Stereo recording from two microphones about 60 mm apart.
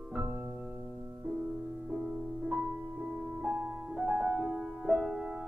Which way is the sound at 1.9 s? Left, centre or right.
Centre.